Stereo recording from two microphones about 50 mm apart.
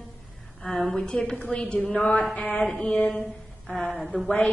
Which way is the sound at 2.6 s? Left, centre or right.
Centre.